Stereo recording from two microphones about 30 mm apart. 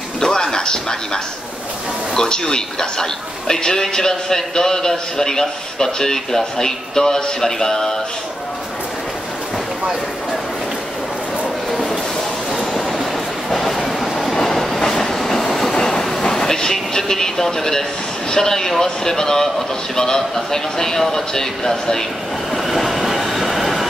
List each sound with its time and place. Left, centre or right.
0.2 s a sound: left
2.1 s a man's voice: left
13.5 s train: centre
14.8 s train: centre
15.7 s train: left
18.3 s a man's voice: centre
22.5 s train: centre